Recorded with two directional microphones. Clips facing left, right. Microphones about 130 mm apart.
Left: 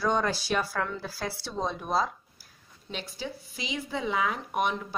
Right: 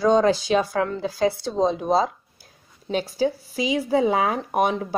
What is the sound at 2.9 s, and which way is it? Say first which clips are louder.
Speech: right 13 dB; 90° right.